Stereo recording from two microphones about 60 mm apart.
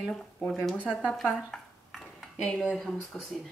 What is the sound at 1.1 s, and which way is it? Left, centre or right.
Dishes, centre.